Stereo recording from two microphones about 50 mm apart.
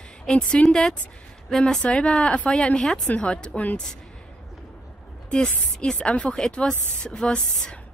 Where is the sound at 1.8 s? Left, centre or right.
Left.